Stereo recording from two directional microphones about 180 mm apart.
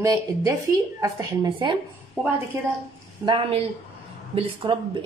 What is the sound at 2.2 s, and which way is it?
Speech, 5° right (ahead or behind).